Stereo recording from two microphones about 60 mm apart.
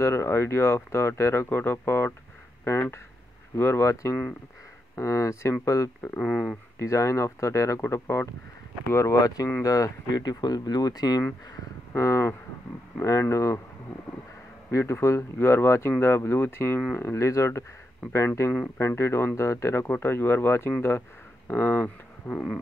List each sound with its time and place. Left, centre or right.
0.0 s speech: left
1.5 s speech: left
2.7 s speech: left
6.1 s speech: centre
6.8 s speech: left
7.8 s speech: left
9.1 s speech: left
9.6 s speech: left
11.9 s speech: left
14.7 s speech: left
22.2 s insect: left